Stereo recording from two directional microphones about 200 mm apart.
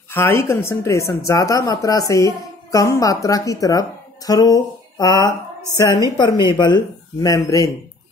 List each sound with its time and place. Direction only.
0.1 s a woman's voice: 10° left (ahead or behind)
4.3 s a sound: 20° left (ahead or behind)
6.1 s speech: 20° left (ahead or behind)